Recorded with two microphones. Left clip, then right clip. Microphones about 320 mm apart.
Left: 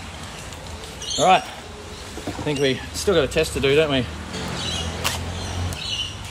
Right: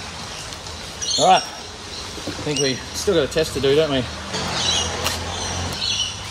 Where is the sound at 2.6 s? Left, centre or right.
Left.